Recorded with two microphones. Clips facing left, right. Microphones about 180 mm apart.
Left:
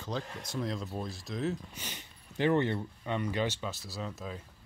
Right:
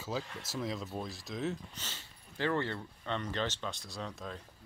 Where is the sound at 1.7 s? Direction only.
15° left (ahead or behind).